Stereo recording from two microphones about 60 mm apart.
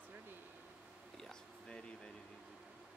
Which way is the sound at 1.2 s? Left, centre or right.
Centre.